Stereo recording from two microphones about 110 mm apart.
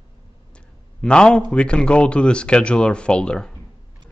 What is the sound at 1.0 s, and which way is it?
A man's voice, 10° left (ahead or behind).